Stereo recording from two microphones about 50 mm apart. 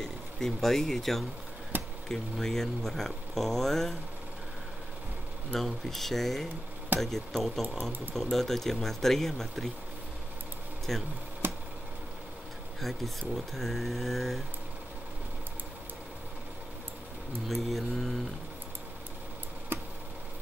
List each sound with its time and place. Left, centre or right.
0.0 s speech: centre
1.7 s a sound: right
2.0 s speech: centre
5.5 s speech: centre
10.9 s speech: centre
11.4 s a sound: right
13.6 s speech: centre
17.6 s speech: centre
19.7 s tick: right